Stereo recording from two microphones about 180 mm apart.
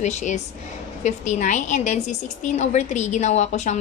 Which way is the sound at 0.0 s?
40° left (ahead or behind).